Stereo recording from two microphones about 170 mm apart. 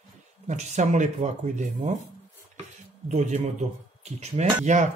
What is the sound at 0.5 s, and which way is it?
Speech, 45° right (ahead or behind).